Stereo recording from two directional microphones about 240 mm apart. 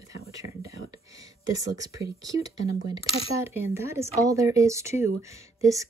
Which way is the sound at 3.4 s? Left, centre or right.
Centre.